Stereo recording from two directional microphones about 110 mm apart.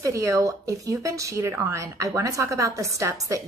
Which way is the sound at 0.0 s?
30° right (ahead or behind).